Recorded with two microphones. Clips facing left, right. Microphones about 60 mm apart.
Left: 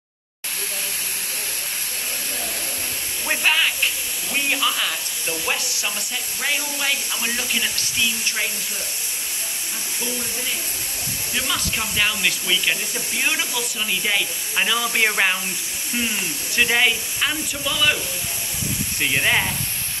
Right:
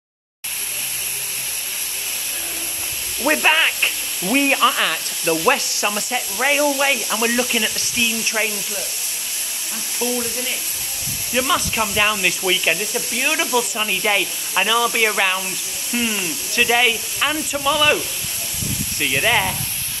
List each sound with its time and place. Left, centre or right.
3.4 s speech: right
4.4 s sizzle: right
4.7 s hiss: right
5.8 s sizzle: right
7.5 s speech: centre
11.3 s speech: centre
14.6 s speech: centre
16.0 s speech: centre
16.5 s speech: centre
17.3 s speech: centre
18.9 s speech: centre